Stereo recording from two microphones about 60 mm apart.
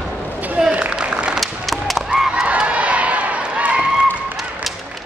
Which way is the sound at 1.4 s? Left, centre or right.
Centre.